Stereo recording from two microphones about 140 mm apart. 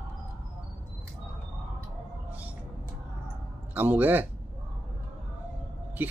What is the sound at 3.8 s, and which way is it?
Speech, 15° right (ahead or behind).